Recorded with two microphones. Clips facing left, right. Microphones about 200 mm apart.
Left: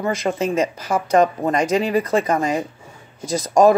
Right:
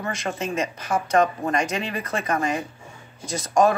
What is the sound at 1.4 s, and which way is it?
Speech, 35° left (ahead or behind).